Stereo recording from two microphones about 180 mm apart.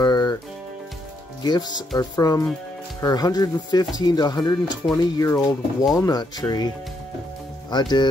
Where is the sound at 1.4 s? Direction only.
20° left (ahead or behind).